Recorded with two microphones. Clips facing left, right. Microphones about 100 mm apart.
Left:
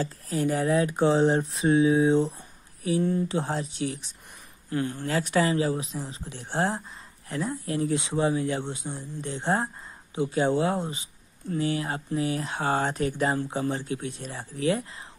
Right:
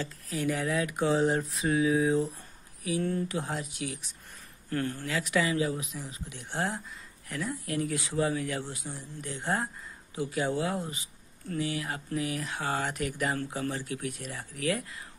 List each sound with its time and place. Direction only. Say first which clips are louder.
0.0 s speech: left 5 dB; 35° left (ahead or behind)
3.0 s speech: left 4 dB; 15° left (ahead or behind)
3.3 s speech: left 5 dB; 30° left (ahead or behind)
4.6 s speech: left 3 dB; 15° left (ahead or behind)
5.0 s speech: left 6 dB; 35° left (ahead or behind)